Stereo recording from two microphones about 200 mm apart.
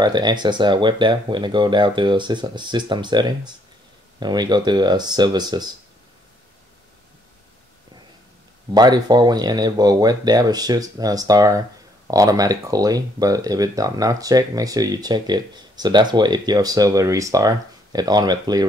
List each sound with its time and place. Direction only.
0.0 s speech: 20° right (ahead or behind)
8.7 s speech: 20° right (ahead or behind)